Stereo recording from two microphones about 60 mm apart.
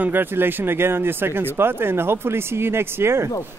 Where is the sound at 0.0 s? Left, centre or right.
Right.